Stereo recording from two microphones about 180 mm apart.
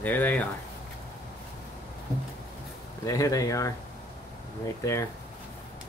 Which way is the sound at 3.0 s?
20° left (ahead or behind).